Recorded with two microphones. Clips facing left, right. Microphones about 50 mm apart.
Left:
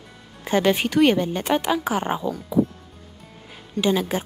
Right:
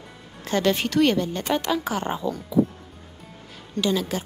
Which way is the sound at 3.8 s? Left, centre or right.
Left.